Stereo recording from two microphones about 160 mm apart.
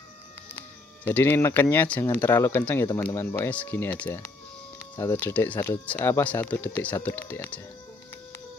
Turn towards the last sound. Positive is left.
turn(degrees=10)  # may be behind; listen again after turning